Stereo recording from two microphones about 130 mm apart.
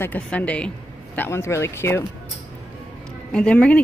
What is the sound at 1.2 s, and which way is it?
Speech, 20° left (ahead or behind).